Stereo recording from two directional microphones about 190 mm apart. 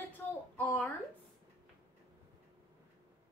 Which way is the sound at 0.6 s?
10° left (ahead or behind).